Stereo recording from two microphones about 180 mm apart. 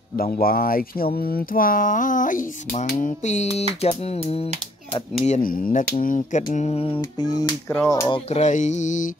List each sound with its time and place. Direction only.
0.1 s speech: 55° left (ahead or behind)
3.0 s music: 45° left (ahead or behind)
5.2 s speech: 45° left (ahead or behind)
6.5 s a sound: 35° left (ahead or behind)
7.6 s speech: 5° left (ahead or behind)
7.9 s a sound: 20° left (ahead or behind)
8.3 s speech: 40° left (ahead or behind)